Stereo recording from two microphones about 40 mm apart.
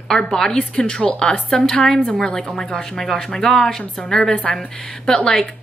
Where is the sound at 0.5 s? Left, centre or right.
Left.